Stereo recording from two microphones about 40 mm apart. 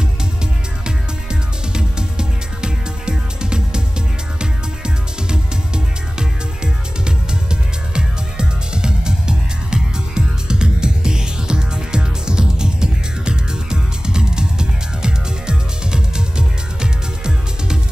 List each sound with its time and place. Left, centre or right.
0.8 s music: centre